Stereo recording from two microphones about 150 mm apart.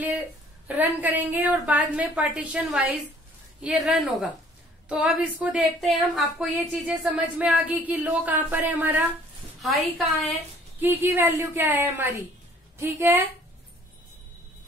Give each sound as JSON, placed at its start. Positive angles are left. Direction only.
{"t": 0.7, "sound": "a woman's voice", "side_deg": -10}
{"t": 9.6, "sound": "a woman's voice", "side_deg": 0}
{"t": 10.8, "sound": "speech", "side_deg": -15}